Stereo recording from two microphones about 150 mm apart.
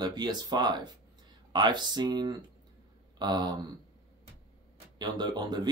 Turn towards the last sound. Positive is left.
turn(degrees=-30)  # may be behind; listen again after turning